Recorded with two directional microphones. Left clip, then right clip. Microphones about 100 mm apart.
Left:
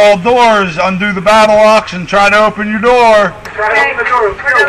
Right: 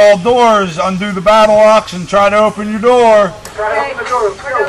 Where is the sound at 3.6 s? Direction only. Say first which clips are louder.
Left 5 dB; 20° right (ahead or behind).